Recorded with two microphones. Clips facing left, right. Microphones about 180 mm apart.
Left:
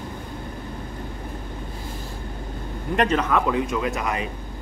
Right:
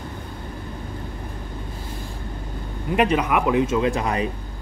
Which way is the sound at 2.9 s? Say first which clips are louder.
Right 1 dB; 10° right (ahead or behind).